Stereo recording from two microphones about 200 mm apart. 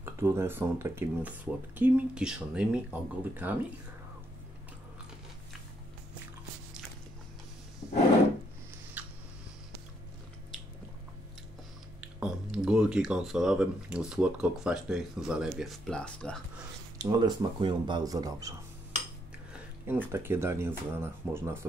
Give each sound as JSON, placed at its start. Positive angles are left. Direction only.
{"t": 0.0, "sound": "speech", "side_deg": -10}
{"t": 9.0, "sound": "a sound", "side_deg": -10}
{"t": 12.0, "sound": "speech", "side_deg": -5}
{"t": 17.0, "sound": "speech", "side_deg": -20}
{"t": 20.1, "sound": "speech", "side_deg": -10}